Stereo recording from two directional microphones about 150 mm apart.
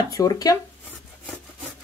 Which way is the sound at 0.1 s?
25° left (ahead or behind).